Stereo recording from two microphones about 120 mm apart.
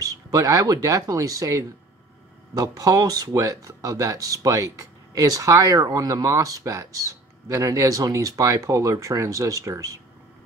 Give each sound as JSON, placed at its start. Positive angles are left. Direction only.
{"t": 0.0, "sound": "speech", "side_deg": -30}